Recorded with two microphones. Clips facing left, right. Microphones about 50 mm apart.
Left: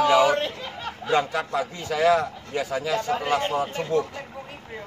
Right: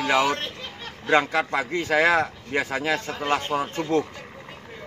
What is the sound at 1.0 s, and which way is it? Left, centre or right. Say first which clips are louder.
A man's voice: right 3 dB; right.